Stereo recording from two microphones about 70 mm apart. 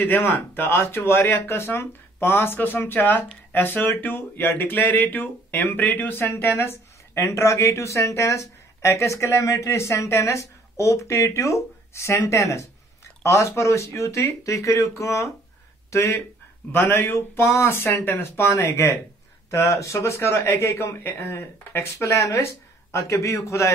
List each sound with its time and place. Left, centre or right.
0.0 s speech: left
16.7 s speech: left